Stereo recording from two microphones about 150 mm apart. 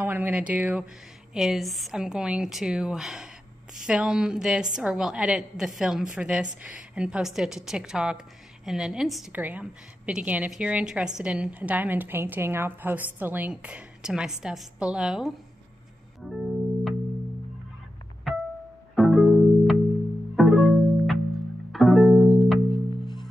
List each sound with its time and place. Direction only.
0.0 s a woman's voice: 15° right (ahead or behind)
16.3 s music: centre (ahead or behind)
18.3 s music: centre (ahead or behind)
21.7 s music: centre (ahead or behind)
22.7 s music: 30° left (ahead or behind)